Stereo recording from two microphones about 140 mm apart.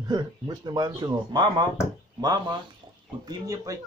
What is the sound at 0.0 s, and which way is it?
Speech, 30° right (ahead or behind).